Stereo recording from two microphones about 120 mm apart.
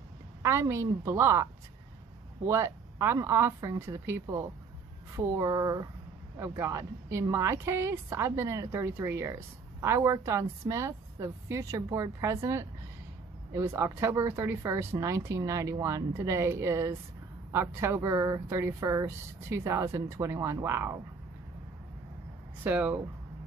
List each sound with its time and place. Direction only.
0.4 s speech: 25° right (ahead or behind)
22.6 s speech: 15° right (ahead or behind)